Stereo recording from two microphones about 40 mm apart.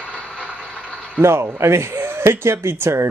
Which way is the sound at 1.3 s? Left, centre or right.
Right.